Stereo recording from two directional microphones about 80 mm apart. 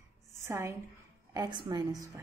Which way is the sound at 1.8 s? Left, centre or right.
Right.